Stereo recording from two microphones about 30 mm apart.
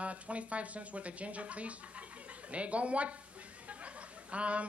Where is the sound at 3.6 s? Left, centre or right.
Right.